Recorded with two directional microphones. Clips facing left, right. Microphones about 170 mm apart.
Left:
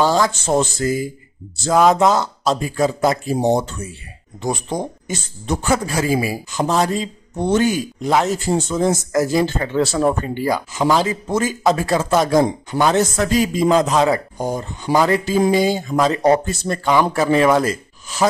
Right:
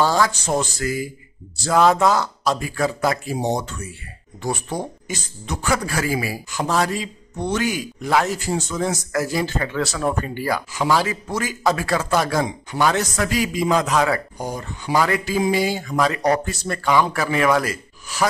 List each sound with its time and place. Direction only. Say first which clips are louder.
0.0 s speech: left 2 dB; 20° left (ahead or behind)